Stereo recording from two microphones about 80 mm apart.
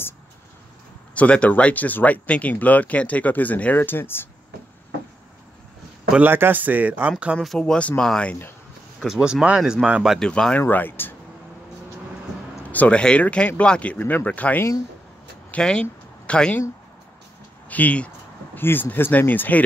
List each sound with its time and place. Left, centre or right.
1.1 s speech: centre
6.1 s speech: right
7.4 s speech: centre
9.0 s speech: centre
10.2 s speech: centre
10.6 s speech: left
12.6 s speech: centre
17.6 s a sound: centre
18.6 s speech: left